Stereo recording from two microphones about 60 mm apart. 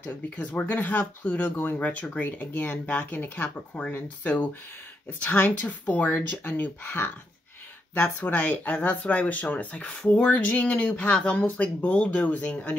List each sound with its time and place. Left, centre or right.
0.0 s speech: left
5.2 s speech: left